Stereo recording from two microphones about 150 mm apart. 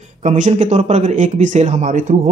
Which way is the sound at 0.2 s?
50° right (ahead or behind).